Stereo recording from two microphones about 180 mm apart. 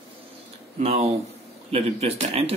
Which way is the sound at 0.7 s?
35° right (ahead or behind).